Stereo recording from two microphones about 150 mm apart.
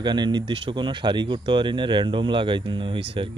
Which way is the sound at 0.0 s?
30° right (ahead or behind).